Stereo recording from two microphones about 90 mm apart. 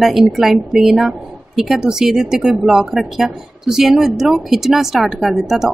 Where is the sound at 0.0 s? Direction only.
5° right (ahead or behind).